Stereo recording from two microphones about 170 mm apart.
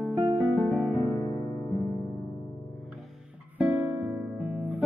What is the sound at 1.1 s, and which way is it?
Electric piano, 25° left (ahead or behind).